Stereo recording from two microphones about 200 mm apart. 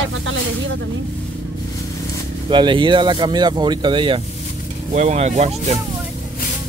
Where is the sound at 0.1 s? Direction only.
75° right (ahead or behind).